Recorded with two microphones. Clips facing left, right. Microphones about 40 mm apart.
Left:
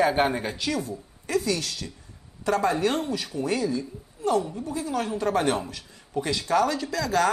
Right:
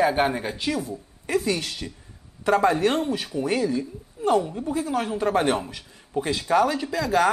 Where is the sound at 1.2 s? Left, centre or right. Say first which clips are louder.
Right 2 dB; right.